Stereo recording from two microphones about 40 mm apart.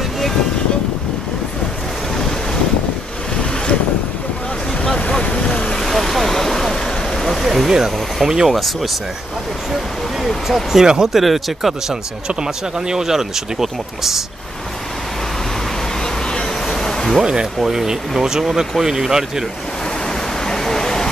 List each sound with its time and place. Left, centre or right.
2.1 s wind noise: centre
5.1 s vehicle: left
7.4 s vacuum cleaner: centre
7.7 s speech: centre
10.2 s speech: centre
11.9 s speech: centre
16.0 s vehicle: centre
17.2 s speech: centre
20.4 s vehicle: centre